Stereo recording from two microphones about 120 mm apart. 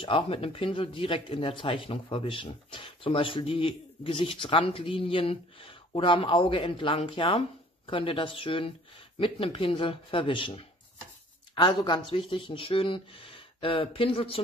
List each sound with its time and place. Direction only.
0.0 s speech: 50° left (ahead or behind)